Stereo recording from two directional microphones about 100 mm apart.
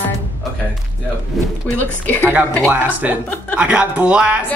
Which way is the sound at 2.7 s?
15° right (ahead or behind).